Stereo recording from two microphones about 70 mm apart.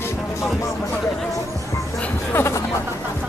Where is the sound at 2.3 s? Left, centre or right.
Left.